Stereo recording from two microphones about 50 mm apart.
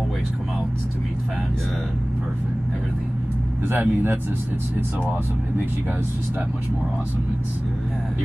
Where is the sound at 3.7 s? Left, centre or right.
Right.